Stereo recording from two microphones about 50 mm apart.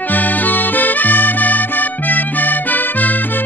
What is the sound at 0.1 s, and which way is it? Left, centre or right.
Music, left.